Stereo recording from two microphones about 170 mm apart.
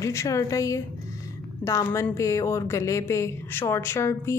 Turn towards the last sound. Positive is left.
turn(degrees=15)  # may be behind; listen again after turning